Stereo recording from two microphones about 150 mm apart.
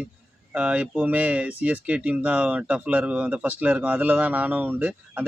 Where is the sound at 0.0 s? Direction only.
5° right (ahead or behind).